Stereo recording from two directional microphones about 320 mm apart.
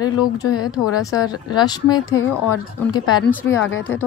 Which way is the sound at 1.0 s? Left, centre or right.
Centre.